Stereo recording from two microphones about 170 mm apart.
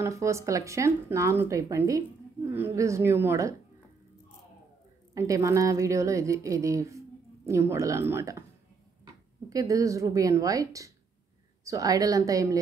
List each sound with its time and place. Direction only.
0.0 s speech: 15° right (ahead or behind)
5.1 s a woman's voice: 20° right (ahead or behind)